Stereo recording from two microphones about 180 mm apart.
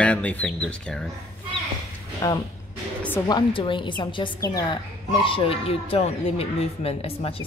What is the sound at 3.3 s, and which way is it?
A woman's voice, 30° left (ahead or behind).